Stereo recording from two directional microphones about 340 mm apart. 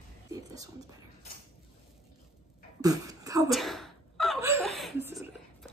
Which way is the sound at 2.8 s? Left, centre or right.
Centre.